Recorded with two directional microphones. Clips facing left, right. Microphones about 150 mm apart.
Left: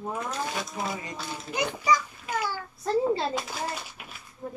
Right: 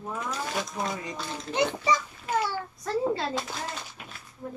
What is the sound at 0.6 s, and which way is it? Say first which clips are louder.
Speech: right 1 dB; 5° left (ahead or behind).